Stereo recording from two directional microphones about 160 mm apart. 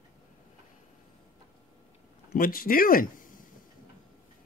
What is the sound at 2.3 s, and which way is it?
Speech, 65° left (ahead or behind).